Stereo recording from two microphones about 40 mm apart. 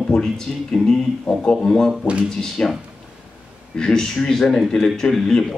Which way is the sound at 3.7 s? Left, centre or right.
Centre.